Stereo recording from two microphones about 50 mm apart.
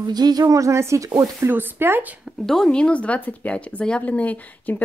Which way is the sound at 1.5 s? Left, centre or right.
Right.